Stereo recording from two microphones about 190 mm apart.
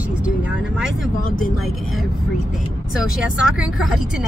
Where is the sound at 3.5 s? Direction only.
Centre (ahead or behind).